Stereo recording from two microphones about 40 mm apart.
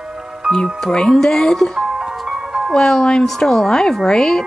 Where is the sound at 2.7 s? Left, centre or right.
Centre.